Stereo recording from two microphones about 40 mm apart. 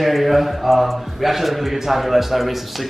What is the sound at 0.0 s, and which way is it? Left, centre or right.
A man's voice, centre.